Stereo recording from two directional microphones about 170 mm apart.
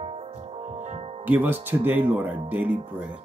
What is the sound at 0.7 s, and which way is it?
Music, 40° right (ahead or behind).